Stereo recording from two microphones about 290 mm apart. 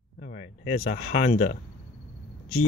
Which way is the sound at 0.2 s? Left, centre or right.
Left.